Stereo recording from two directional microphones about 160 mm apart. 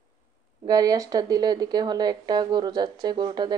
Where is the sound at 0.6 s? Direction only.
20° right (ahead or behind).